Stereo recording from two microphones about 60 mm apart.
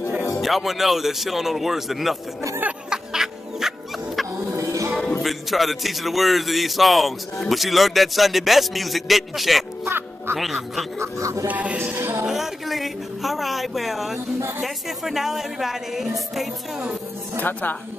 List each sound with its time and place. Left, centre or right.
0.4 s a man's voice: centre
2.9 s music: centre
4.6 s music: right
5.2 s a man's voice: centre
9.8 s music: right
10.3 s a man's voice: centre
11.0 s music: right
11.4 s music: right
12.0 s music: right
12.3 s a man's voice: centre
17.4 s speech: left